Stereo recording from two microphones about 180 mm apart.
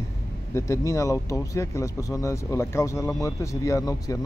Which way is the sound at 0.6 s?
15° left (ahead or behind).